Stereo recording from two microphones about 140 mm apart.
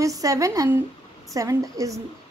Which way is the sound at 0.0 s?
25° right (ahead or behind).